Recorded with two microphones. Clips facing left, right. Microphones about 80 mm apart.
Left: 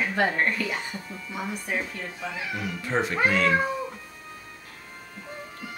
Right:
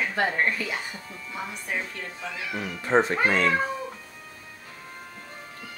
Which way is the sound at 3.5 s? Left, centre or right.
Centre.